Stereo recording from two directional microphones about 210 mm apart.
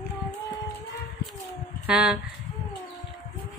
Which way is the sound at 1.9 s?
5° right (ahead or behind).